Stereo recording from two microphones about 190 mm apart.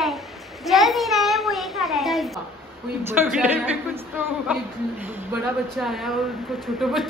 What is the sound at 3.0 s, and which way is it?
A man's voice, 10° right (ahead or behind).